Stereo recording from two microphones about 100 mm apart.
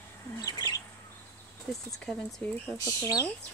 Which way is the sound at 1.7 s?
10° left (ahead or behind).